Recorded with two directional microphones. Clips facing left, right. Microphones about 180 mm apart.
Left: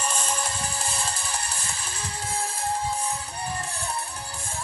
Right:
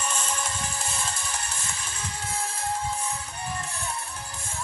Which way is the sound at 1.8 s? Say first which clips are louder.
Left 1 dB; 35° left (ahead or behind).